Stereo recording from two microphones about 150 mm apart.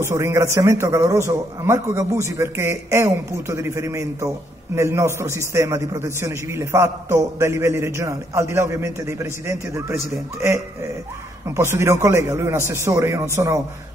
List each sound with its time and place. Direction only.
0.0 s a man's voice: 20° right (ahead or behind)